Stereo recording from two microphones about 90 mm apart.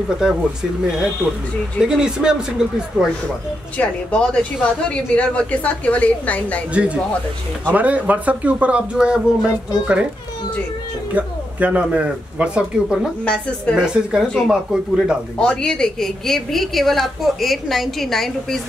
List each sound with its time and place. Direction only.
0.2 s speech: 5° right (ahead or behind)
3.7 s a woman's voice: 15° left (ahead or behind)
6.7 s speech: 15° right (ahead or behind)
11.1 s speech: 15° right (ahead or behind)
13.2 s a woman's voice: 10° left (ahead or behind)
14.5 s speech: 10° right (ahead or behind)
15.3 s a woman's voice: 10° left (ahead or behind)